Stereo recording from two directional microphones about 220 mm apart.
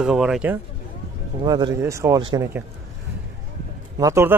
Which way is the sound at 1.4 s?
20° right (ahead or behind).